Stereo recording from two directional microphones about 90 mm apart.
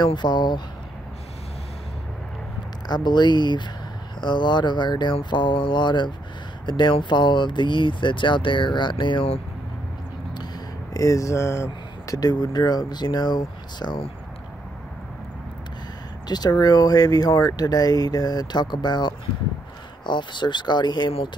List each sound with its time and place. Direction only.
0.0 s speech: 55° left (ahead or behind)
2.9 s speech: 55° left (ahead or behind)
10.3 s a sound: 55° left (ahead or behind)
11.0 s speech: 40° left (ahead or behind)
12.2 s speech: 50° left (ahead or behind)
16.3 s speech: 50° left (ahead or behind)